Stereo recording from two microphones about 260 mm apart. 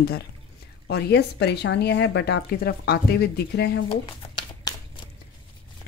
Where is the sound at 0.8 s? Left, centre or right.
Left.